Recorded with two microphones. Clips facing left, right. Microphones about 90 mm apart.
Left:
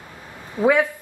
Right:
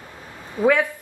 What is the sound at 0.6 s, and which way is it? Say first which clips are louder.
Speech: left 1 dB; 15° left (ahead or behind).